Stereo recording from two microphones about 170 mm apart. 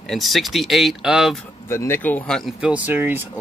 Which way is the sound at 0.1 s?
Centre (ahead or behind).